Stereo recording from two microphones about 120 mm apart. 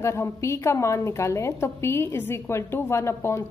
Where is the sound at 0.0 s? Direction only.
20° left (ahead or behind).